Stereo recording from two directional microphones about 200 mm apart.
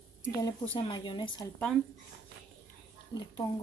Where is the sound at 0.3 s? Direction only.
20° left (ahead or behind).